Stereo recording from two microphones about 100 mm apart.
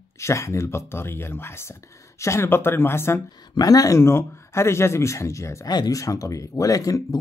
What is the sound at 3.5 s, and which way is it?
Speech, 40° left (ahead or behind).